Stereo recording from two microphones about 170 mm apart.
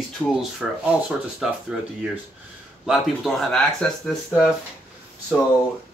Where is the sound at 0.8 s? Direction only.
5° right (ahead or behind).